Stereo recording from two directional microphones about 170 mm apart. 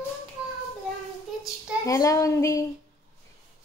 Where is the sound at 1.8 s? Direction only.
20° left (ahead or behind).